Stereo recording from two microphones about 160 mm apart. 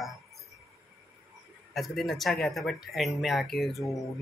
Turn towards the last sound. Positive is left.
turn(degrees=0)  # may be behind; listen again after turning